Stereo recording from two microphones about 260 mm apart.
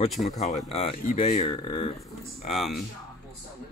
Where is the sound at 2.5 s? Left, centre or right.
Centre.